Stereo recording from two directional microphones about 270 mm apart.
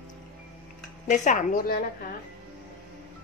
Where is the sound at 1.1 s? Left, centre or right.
Left.